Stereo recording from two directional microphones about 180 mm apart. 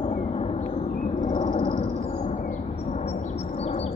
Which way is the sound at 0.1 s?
35° left (ahead or behind).